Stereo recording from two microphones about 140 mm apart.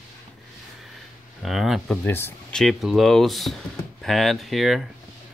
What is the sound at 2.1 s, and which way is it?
Speech, 15° left (ahead or behind).